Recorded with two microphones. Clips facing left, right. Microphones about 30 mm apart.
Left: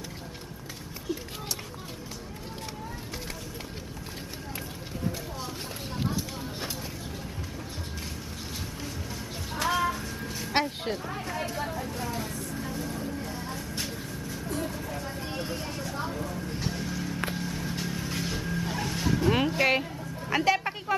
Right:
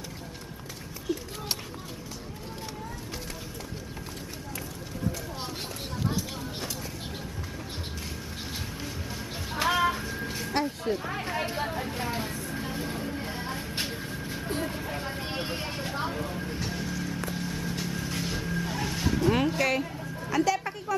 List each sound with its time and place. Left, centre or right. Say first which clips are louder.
9.5 s child singing: right 2 dB; centre
10.0 s music: right 2 dB; centre
10.5 s a sound: left 3 dB; left
11.1 s hubbub: right 2 dB; right
11.7 s vehicle: right 2 dB; right
16.5 s music: even; centre
17.4 s vehicle: even; centre
20.2 s a sound: left 1 dB; left